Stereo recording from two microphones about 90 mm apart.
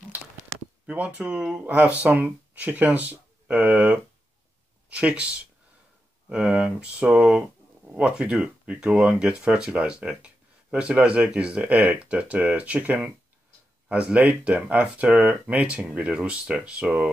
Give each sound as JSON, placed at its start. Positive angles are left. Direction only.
{"t": 0.8, "sound": "speech", "side_deg": -15}